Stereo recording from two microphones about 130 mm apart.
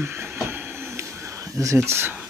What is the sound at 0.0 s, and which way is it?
Train, 20° right (ahead or behind).